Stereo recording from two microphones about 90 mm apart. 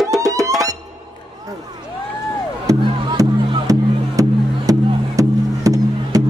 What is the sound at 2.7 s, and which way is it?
Music, 40° right (ahead or behind).